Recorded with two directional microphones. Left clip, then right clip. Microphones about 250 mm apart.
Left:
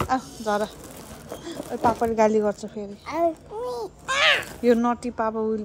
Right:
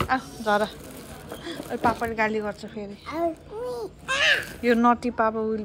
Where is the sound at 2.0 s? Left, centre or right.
Centre.